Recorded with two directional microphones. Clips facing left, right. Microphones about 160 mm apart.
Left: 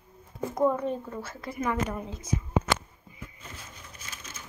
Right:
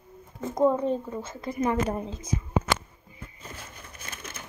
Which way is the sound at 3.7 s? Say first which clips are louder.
Right 3 dB; 55° right (ahead or behind).